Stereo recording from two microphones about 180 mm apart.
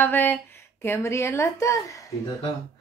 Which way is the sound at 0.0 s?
10° left (ahead or behind).